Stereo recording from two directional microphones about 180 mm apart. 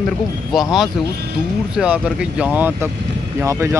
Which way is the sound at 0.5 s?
Centre (ahead or behind).